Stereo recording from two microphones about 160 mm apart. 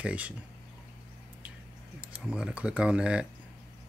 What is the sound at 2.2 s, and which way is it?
Speech, 5° right (ahead or behind).